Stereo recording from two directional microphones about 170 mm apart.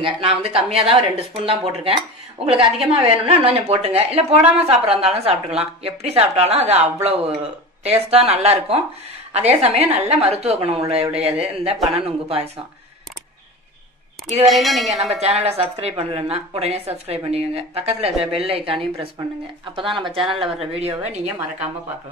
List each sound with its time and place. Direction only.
0.0 s a woman's voice: 35° right (ahead or behind)
14.4 s speech: centre (ahead or behind)
15.0 s a woman's voice: 40° right (ahead or behind)